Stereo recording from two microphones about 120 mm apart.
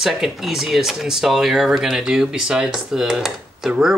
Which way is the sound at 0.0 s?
5° right (ahead or behind).